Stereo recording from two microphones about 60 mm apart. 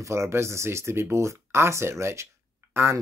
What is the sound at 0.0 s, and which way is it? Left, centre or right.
Speech, right.